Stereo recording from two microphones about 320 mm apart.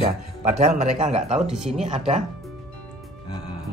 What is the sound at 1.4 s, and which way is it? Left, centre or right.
Music, centre.